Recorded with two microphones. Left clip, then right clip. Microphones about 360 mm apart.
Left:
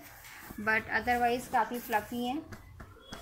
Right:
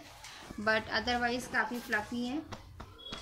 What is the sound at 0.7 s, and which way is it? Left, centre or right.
A woman's voice, centre.